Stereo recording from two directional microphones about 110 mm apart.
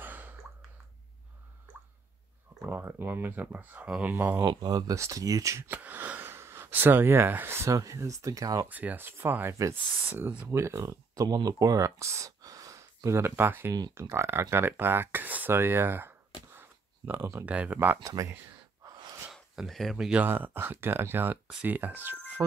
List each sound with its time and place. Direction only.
0.0 s a sound: 15° right (ahead or behind)
2.6 s speech: 20° right (ahead or behind)
4.4 s speech: 40° right (ahead or behind)
5.7 s speech: 15° right (ahead or behind); by 8.6 s 30° right (ahead or behind)
8.6 s speech: 15° right (ahead or behind)
16.5 s a sound: 20° right (ahead or behind)
17.5 s speech: 15° right (ahead or behind)
18.0 s speech: 30° right (ahead or behind)
18.9 s gasp: 35° right (ahead or behind)
19.3 s speech: centre (ahead or behind)
20.2 s speech: 20° right (ahead or behind)